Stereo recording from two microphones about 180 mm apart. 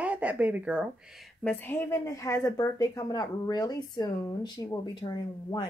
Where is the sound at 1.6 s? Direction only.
15° left (ahead or behind).